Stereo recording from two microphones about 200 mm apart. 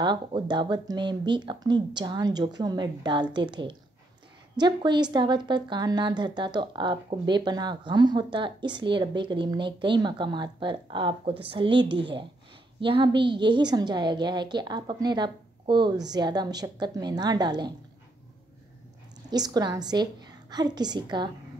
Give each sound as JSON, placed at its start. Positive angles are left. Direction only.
{"t": 0.0, "sound": "a woman's voice", "side_deg": -20}
{"t": 19.3, "sound": "a woman's voice", "side_deg": -20}